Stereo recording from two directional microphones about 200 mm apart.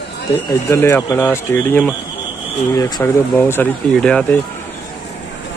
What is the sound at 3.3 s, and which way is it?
Speech, 5° left (ahead or behind).